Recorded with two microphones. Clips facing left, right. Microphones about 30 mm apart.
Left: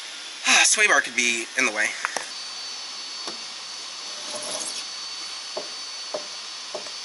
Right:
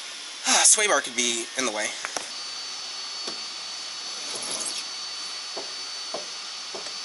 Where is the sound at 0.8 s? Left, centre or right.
Left.